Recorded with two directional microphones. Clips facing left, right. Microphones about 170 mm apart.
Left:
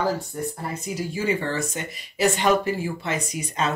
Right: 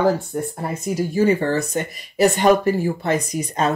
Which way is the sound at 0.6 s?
45° right (ahead or behind).